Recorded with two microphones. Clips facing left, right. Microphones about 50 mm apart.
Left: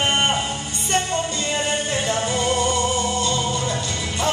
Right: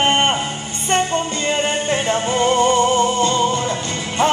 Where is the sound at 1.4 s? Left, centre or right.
Right.